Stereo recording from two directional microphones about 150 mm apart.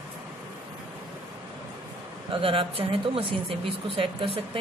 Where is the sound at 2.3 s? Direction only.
35° right (ahead or behind).